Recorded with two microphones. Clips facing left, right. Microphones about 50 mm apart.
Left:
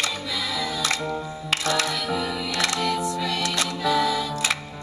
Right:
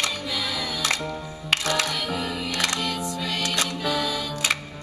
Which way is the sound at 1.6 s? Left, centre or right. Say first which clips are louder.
Left 1 dB; right.